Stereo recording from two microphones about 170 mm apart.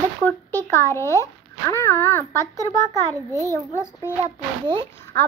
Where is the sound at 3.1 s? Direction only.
20° right (ahead or behind).